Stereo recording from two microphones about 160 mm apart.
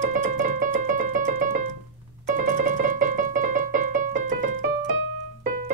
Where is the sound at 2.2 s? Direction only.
50° right (ahead or behind).